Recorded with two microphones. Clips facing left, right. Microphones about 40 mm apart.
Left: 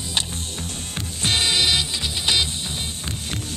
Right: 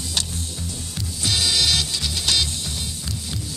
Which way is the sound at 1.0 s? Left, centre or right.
Left.